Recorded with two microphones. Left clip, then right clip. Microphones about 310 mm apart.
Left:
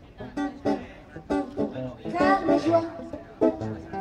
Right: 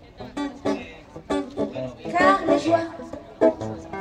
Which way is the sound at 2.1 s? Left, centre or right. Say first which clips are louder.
Right 4 dB; right.